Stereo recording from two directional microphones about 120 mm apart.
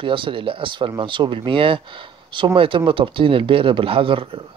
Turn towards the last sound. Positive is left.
turn(degrees=-50)  # may be behind; listen again after turning